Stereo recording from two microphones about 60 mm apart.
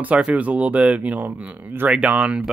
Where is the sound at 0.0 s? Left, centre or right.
Right.